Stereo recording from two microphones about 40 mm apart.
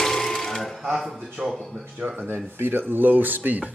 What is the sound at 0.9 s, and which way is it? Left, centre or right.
Speech, centre.